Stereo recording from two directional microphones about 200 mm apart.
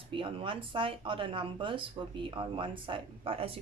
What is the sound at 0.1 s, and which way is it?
Speech, 25° right (ahead or behind).